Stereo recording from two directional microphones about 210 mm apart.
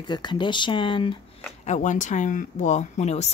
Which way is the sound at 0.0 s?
20° left (ahead or behind).